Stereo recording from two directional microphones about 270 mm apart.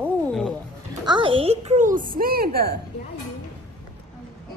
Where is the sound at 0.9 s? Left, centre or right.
Centre; by 2.7 s right.